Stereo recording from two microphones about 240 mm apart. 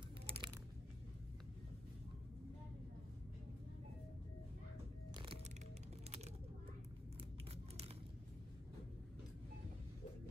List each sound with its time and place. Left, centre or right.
0.3 s crunch: centre
5.1 s music: right